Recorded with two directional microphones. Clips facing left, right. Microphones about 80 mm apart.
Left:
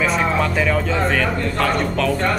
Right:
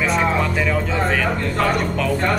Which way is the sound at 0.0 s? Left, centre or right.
Centre.